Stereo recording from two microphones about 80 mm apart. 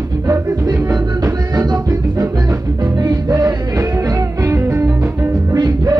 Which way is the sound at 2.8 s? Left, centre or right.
Right.